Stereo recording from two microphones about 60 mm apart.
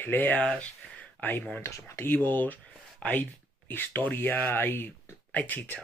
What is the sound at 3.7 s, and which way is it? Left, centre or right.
Speech, left.